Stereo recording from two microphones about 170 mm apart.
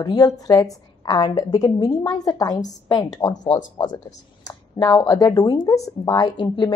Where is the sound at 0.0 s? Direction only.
25° left (ahead or behind).